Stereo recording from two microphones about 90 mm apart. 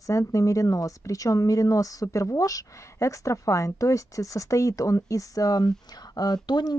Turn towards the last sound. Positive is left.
turn(degrees=50)  # may be behind; listen again after turning